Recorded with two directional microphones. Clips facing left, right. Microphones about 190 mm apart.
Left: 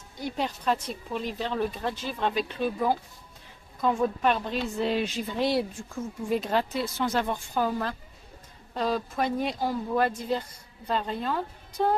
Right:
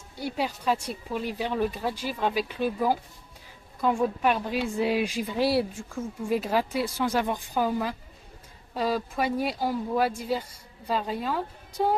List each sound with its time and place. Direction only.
0.2 s a woman's voice: 10° right (ahead or behind)